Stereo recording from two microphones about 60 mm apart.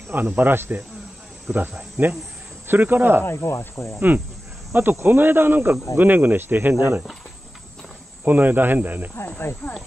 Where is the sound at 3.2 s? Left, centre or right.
Left.